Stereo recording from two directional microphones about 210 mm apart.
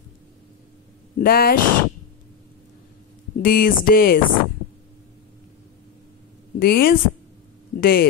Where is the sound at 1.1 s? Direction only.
45° left (ahead or behind).